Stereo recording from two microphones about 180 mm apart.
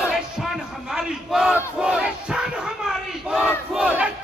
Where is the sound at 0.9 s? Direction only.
5° right (ahead or behind).